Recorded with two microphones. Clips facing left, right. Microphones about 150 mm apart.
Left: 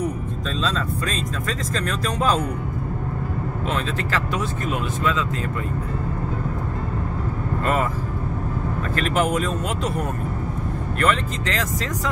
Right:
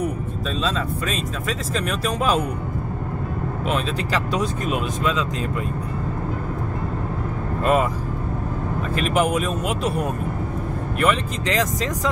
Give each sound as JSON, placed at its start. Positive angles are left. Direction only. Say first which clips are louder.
{"t": 0.7, "sound": "speech", "louder": "even", "side_deg": -10}
{"t": 3.6, "sound": "speech", "louder": "right 2 dB", "side_deg": -15}
{"t": 8.9, "sound": "speech", "louder": "right 1 dB", "side_deg": -15}